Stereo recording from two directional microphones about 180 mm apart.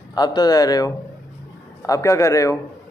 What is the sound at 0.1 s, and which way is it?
A man's voice, 20° left (ahead or behind).